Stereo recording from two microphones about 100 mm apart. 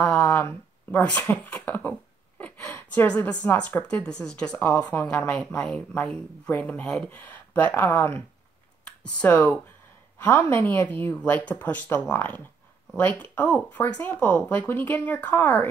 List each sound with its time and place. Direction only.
0.0 s a sound: 15° left (ahead or behind)
3.4 s speech: 15° left (ahead or behind)
7.1 s speech: 20° left (ahead or behind)
9.2 s speech: 15° left (ahead or behind)